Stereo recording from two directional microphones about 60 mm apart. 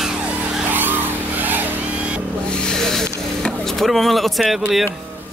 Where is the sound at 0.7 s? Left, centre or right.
Right.